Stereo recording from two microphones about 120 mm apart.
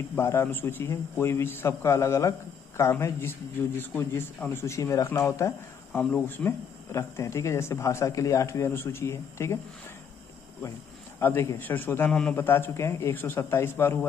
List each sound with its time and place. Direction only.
0.1 s speech: 20° left (ahead or behind)
11.1 s a man's voice: 20° left (ahead or behind)
12.1 s a man's voice: 5° left (ahead or behind)
12.4 s speech: 20° left (ahead or behind)